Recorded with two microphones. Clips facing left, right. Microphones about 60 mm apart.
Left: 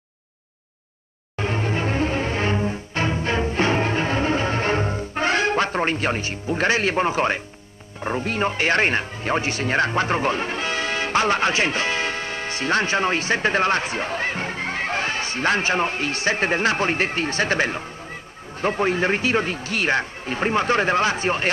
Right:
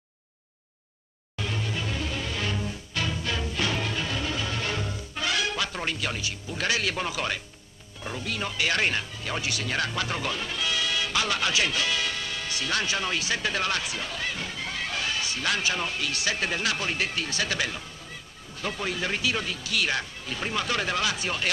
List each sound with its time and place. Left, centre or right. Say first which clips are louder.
1.3 s music: left 8 dB; left
8.0 s speech: left 9 dB; left